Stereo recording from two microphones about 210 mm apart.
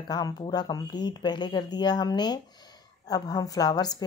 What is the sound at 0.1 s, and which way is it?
Speech, 20° left (ahead or behind).